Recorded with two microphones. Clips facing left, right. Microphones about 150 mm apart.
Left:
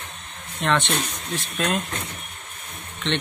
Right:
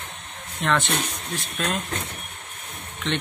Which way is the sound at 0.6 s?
Centre (ahead or behind).